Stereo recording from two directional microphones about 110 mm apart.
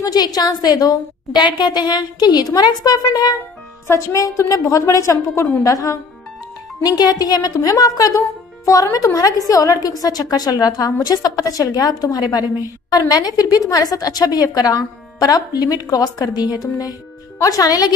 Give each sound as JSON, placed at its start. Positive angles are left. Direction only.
{"t": 0.0, "sound": "a woman's voice", "side_deg": 35}